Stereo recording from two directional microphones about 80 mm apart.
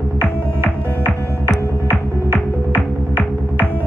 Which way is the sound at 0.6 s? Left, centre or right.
Right.